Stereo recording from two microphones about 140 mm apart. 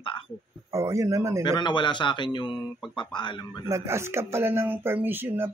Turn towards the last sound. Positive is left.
turn(degrees=-15)  # may be behind; listen again after turning